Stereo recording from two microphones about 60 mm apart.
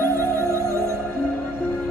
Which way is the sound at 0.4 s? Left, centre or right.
Right.